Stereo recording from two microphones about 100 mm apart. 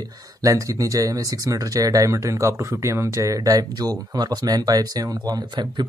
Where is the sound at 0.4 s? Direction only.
35° right (ahead or behind).